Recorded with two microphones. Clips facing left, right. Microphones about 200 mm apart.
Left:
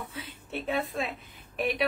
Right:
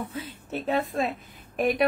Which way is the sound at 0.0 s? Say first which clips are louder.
Right 6 dB; 40° right (ahead or behind).